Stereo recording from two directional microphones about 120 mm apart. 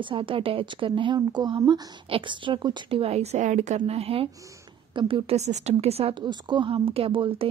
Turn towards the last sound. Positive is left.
turn(degrees=-50)  # may be behind; listen again after turning